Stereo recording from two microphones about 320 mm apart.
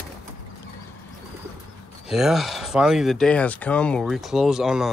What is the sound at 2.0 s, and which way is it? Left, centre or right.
Speech, centre.